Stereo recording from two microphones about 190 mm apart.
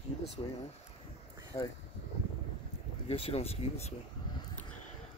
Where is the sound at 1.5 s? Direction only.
25° left (ahead or behind).